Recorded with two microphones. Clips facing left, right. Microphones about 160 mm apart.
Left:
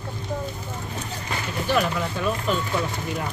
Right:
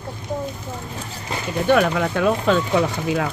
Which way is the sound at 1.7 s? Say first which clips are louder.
Right 6 dB; 70° right (ahead or behind).